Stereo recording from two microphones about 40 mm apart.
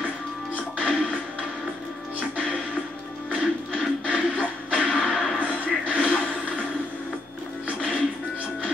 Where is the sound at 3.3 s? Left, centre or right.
Right.